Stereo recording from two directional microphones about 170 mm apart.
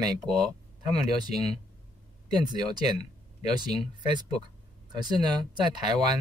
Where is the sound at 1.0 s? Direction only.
25° right (ahead or behind).